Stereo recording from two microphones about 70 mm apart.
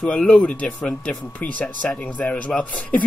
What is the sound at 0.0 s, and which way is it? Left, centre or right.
Speech, centre.